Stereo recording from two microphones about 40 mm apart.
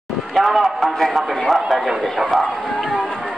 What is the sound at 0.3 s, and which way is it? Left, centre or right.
A man's voice, centre.